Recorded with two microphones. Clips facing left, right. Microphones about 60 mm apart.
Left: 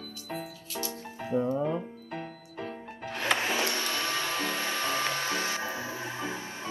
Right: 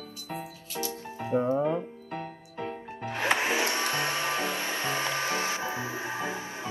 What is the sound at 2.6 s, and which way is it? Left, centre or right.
Music, right.